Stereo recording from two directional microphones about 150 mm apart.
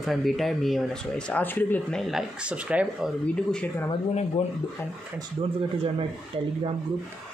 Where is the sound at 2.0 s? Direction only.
Centre (ahead or behind).